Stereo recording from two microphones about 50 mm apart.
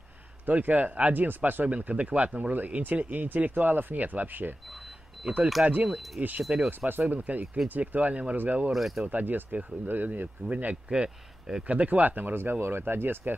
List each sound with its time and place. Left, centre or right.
0.5 s speech: right
5.9 s speech: centre
6.5 s speech: right
8.7 s speech: centre
9.0 s speech: right
10.9 s speech: centre
11.6 s speech: right
12.4 s speech: right